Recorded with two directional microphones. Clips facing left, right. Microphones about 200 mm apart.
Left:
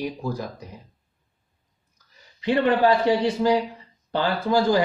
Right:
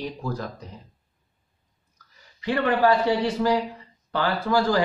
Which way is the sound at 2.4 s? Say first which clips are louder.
Left 2 dB; 20° left (ahead or behind).